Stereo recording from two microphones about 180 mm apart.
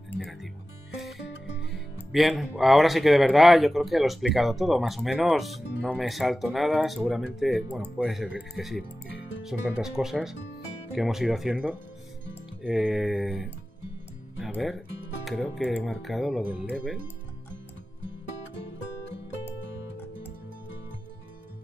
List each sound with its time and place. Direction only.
0.2 s speech: centre (ahead or behind)
1.2 s music: 75° left (ahead or behind)
2.1 s speech: centre (ahead or behind)